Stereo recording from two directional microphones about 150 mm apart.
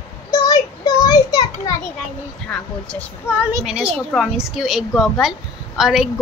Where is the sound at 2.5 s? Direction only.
10° left (ahead or behind).